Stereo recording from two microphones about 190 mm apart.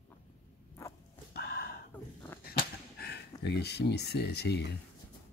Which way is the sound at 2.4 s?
55° left (ahead or behind).